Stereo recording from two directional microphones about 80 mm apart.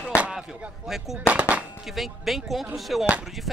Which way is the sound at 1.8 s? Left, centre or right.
Centre.